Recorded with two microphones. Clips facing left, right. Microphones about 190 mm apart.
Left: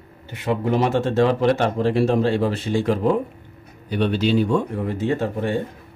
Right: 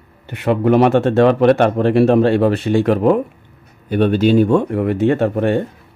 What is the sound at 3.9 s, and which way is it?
Speech, 50° right (ahead or behind).